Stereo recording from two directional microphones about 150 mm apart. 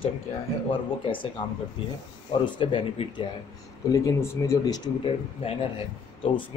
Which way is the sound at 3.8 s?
20° left (ahead or behind).